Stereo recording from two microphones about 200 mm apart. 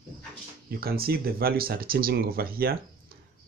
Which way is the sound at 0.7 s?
50° right (ahead or behind).